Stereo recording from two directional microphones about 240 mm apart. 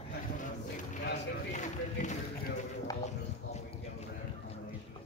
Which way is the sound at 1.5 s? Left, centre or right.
Left.